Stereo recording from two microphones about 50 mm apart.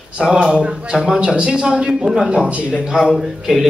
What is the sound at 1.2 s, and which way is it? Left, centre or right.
A man's voice, centre.